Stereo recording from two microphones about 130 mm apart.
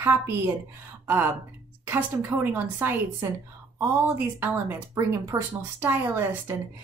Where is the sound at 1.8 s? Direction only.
15° right (ahead or behind).